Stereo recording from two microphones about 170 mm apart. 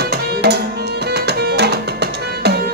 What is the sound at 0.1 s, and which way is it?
Music, 75° right (ahead or behind).